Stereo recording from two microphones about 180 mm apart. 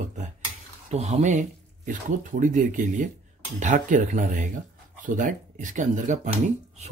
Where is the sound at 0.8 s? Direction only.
40° right (ahead or behind).